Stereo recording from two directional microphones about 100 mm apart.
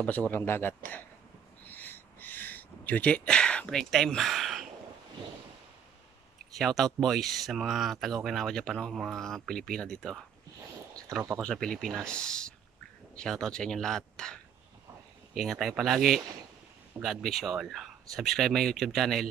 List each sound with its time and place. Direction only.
0.0 s speech: 15° left (ahead or behind)
1.7 s a sound: 20° left (ahead or behind); by 4.6 s centre (ahead or behind)
6.5 s speech: centre (ahead or behind)
11.4 s speech: 10° left (ahead or behind)